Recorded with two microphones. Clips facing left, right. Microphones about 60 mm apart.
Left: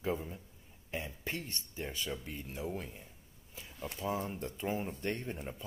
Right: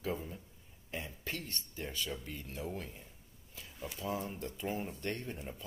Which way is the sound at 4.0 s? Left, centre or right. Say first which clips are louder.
Left 2 dB; left.